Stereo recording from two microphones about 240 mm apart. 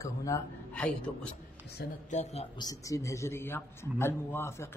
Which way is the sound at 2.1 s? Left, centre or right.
Left.